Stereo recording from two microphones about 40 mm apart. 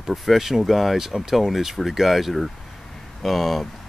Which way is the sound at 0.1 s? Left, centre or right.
Centre.